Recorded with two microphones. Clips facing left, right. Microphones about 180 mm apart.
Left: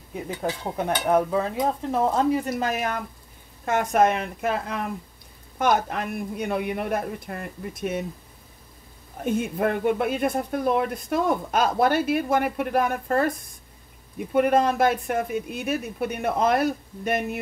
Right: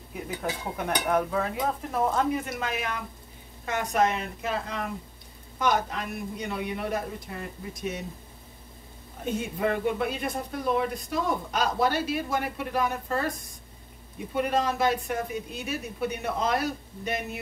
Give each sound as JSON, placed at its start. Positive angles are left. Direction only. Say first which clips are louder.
{"t": 0.4, "sound": "dishes", "louder": "left 5 dB", "side_deg": 30}
{"t": 3.6, "sound": "speech", "louder": "left 5 dB", "side_deg": 50}
{"t": 9.2, "sound": "speech", "louder": "left 4 dB", "side_deg": 55}